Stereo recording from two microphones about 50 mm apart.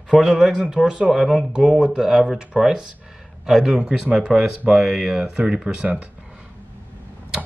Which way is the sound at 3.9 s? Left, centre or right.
Centre.